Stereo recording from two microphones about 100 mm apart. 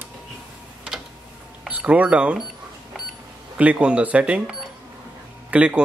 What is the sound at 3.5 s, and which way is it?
Speech, 15° right (ahead or behind).